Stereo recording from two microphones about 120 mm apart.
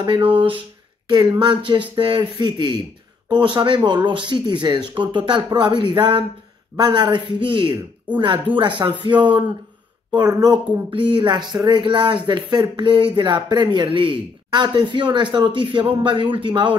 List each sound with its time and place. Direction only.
0.0 s speech: 45° right (ahead or behind)
1.0 s speech: 35° right (ahead or behind)